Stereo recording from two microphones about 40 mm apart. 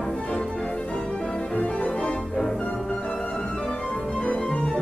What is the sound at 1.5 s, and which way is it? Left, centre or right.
Organ, left.